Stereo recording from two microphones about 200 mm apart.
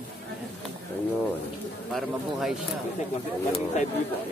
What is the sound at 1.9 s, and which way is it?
Speech, centre (ahead or behind).